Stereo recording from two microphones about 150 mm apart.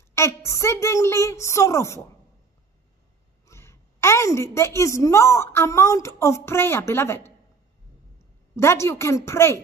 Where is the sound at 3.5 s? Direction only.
20° left (ahead or behind).